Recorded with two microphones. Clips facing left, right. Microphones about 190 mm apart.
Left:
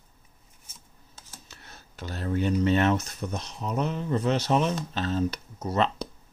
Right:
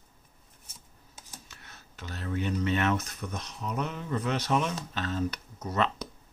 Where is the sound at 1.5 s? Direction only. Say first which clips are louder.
Left 2 dB; 35° left (ahead or behind).